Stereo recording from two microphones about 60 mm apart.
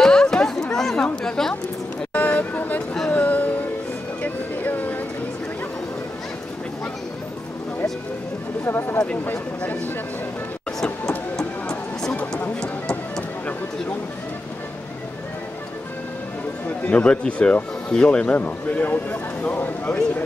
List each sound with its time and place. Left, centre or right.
0.0 s chatter: centre
2.1 s a sound: left
3.1 s music: left
8.6 s speech: left
8.9 s speech: centre
10.8 s a sound: centre
12.5 s music: centre
16.6 s a sound: left
17.0 s speech: centre